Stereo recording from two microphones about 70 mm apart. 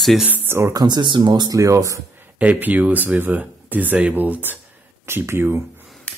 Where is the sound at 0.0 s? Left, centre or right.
Centre.